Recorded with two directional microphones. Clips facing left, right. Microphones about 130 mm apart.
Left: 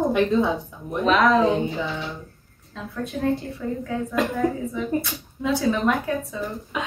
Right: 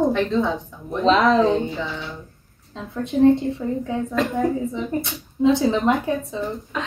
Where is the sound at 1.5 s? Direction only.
20° left (ahead or behind).